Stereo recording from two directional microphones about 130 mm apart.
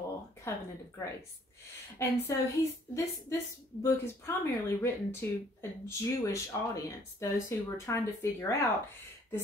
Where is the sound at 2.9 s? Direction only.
20° left (ahead or behind).